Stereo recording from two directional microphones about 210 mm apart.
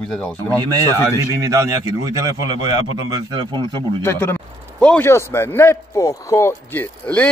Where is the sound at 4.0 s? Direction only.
10° left (ahead or behind).